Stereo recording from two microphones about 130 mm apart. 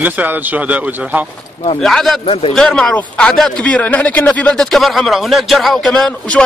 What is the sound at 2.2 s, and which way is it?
Speech, 45° left (ahead or behind).